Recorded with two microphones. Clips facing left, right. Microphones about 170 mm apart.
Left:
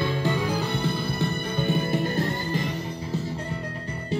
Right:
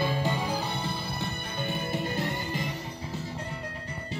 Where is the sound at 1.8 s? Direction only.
15° right (ahead or behind).